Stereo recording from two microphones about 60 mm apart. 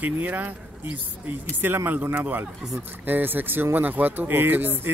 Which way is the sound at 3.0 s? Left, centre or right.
Right.